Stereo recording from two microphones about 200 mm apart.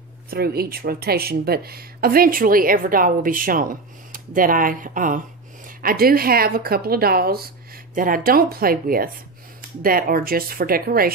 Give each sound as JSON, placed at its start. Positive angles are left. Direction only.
{"t": 0.3, "sound": "speech", "side_deg": -50}